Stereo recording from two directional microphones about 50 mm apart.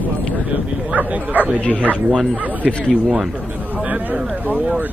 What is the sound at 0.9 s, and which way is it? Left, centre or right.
Speech, right.